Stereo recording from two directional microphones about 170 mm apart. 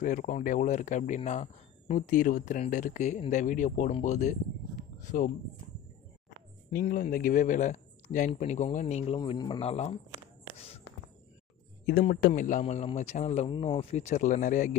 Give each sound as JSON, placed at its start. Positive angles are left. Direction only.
{"t": 0.0, "sound": "speech", "side_deg": 50}
{"t": 6.7, "sound": "speech", "side_deg": 55}
{"t": 11.8, "sound": "speech", "side_deg": 60}